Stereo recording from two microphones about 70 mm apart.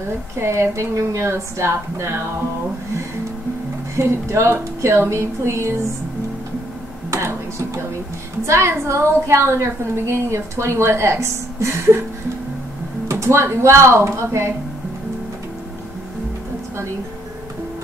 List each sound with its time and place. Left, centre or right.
0.4 s a woman's voice: right
3.9 s a woman's voice: right
7.1 s computer keyboard: right
8.5 s a woman's voice: right
13.1 s a woman's voice: right